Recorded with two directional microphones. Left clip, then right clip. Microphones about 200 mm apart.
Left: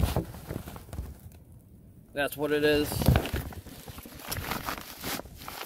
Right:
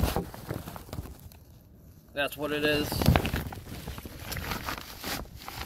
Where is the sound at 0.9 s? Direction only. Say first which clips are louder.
Right 4 dB; 35° right (ahead or behind).